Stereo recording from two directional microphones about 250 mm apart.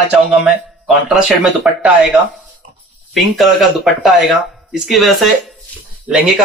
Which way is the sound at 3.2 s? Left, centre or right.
Centre.